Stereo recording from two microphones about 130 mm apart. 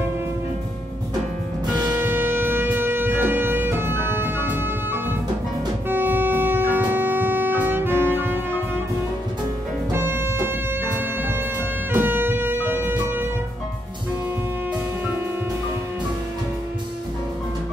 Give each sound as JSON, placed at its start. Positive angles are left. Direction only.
{"t": 1.9, "sound": "shofar", "side_deg": -15}
{"t": 5.9, "sound": "music", "side_deg": -15}
{"t": 9.9, "sound": "music", "side_deg": -20}